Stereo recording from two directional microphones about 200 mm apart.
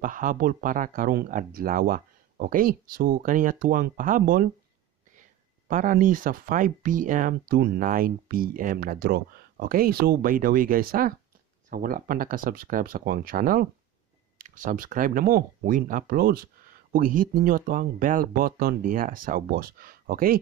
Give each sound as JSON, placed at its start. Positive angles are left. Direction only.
{"t": 0.0, "sound": "speech", "side_deg": -45}
{"t": 5.7, "sound": "speech", "side_deg": -40}